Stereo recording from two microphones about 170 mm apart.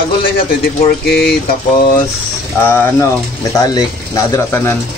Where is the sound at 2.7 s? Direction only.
10° left (ahead or behind).